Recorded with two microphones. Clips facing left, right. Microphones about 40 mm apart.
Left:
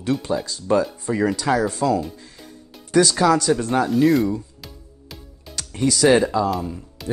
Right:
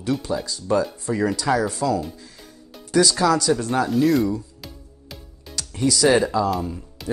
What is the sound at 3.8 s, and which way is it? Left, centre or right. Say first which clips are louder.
Speech: left 2 dB; centre.